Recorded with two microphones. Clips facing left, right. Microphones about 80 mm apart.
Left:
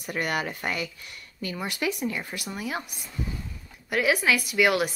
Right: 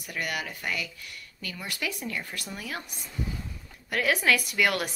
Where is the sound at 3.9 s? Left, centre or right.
Centre.